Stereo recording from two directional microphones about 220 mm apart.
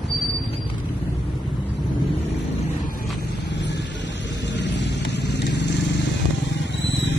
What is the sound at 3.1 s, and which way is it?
Vehicle, 50° left (ahead or behind).